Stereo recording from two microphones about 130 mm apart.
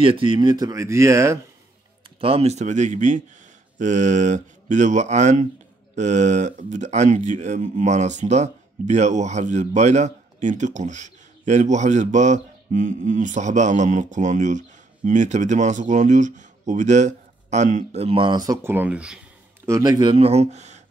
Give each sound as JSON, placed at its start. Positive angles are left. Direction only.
{"t": 0.0, "sound": "speech", "side_deg": -45}
{"t": 2.1, "sound": "speech", "side_deg": -45}
{"t": 18.6, "sound": "speech", "side_deg": -15}
{"t": 19.6, "sound": "speech", "side_deg": -25}